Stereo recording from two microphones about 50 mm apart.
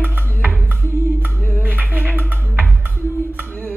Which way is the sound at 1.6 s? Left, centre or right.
Right.